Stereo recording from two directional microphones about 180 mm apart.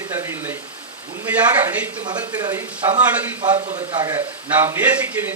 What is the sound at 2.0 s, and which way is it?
Speech, 25° right (ahead or behind).